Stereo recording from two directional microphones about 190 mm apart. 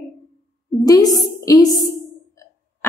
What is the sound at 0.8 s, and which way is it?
Speech, 20° left (ahead or behind).